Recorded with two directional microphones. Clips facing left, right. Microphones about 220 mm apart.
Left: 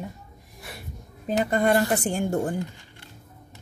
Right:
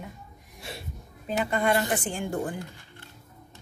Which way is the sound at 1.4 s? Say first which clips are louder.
Left 4 dB; 40° left (ahead or behind).